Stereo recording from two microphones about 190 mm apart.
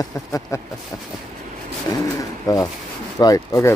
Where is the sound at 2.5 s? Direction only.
20° left (ahead or behind).